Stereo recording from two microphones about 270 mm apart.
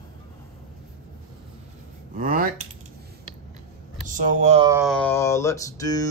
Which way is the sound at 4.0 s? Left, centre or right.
Right.